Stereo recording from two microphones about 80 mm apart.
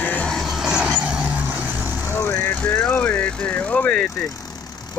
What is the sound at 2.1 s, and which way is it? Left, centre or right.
Vehicle, left.